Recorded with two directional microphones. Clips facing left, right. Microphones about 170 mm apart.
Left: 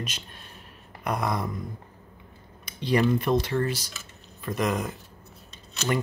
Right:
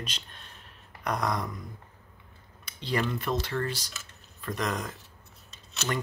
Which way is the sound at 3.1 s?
15° left (ahead or behind).